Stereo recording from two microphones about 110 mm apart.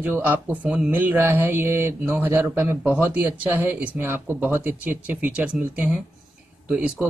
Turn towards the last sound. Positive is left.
turn(degrees=-10)  # may be behind; listen again after turning